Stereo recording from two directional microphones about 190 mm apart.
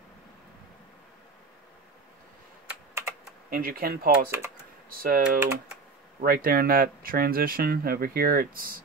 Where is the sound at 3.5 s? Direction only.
50° right (ahead or behind).